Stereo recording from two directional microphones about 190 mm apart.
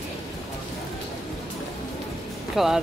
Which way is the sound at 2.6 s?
Centre (ahead or behind).